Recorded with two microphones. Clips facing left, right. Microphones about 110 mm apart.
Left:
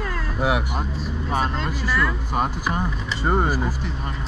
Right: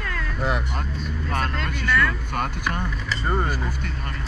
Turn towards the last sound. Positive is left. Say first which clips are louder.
# left 4 dB
turn(degrees=5)  # may be behind; listen again after turning